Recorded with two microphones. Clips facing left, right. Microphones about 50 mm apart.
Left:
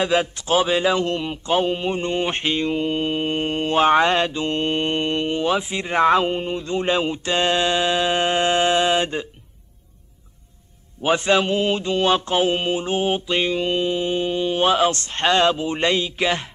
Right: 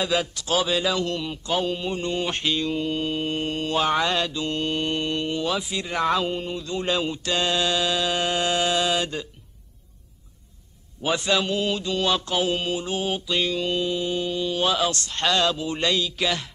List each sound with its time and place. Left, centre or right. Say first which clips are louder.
0.0 s mantra: left 4 dB; left
11.0 s mantra: left 5 dB; left